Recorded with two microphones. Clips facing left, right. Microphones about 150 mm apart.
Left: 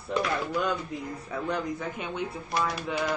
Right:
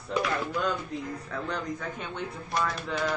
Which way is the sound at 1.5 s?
10° left (ahead or behind).